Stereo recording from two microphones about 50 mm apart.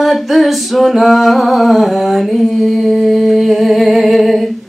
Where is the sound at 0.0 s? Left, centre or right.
Centre.